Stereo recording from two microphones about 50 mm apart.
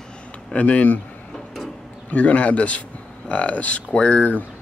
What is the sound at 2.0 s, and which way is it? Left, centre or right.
Speech, left.